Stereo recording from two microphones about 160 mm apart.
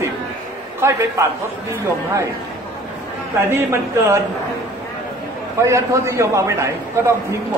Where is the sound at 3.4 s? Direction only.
15° right (ahead or behind).